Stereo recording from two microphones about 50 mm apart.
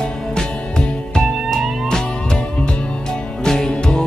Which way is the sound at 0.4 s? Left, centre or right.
Centre.